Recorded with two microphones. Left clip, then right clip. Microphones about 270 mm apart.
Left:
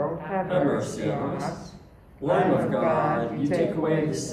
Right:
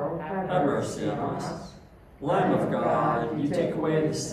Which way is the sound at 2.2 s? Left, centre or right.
Centre.